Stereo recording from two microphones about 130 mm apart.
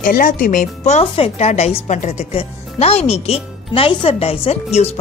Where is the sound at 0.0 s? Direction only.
90° left; by 1.0 s 70° left (ahead or behind).